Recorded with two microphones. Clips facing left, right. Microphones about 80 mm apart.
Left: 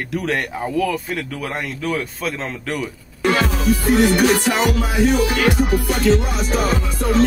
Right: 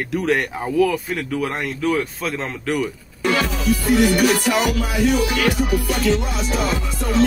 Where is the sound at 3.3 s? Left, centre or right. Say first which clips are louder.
Left 2 dB; left.